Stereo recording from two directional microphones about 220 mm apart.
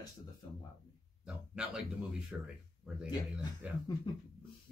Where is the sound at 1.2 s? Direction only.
5° right (ahead or behind).